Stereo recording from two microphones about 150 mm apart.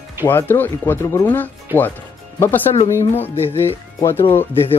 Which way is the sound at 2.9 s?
15° left (ahead or behind).